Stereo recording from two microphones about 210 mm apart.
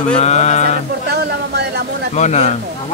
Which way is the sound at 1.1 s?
50° right (ahead or behind).